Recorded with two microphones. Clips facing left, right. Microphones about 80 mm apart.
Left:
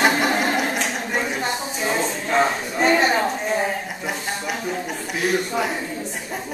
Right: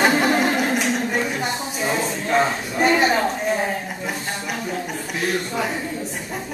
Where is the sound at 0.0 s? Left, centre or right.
Centre.